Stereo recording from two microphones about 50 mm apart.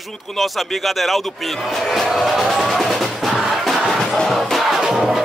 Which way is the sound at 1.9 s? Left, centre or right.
Centre.